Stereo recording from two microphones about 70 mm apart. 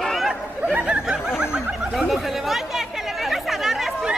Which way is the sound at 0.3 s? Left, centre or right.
Right.